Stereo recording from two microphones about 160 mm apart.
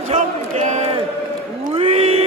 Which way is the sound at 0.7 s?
45° right (ahead or behind).